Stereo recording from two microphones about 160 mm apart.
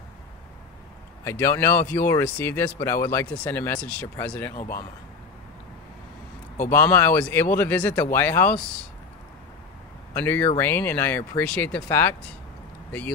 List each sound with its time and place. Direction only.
1.2 s speech: 15° left (ahead or behind)
4.6 s speech: 60° left (ahead or behind)
6.7 s speech: 15° left (ahead or behind)
10.1 s speech: 15° left (ahead or behind)